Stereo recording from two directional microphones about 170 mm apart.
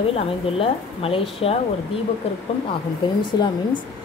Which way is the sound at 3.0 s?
25° left (ahead or behind).